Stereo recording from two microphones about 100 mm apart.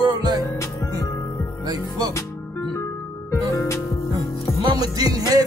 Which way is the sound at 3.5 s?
30° left (ahead or behind).